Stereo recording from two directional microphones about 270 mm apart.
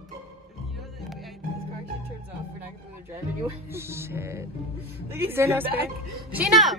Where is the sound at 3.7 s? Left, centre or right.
Centre.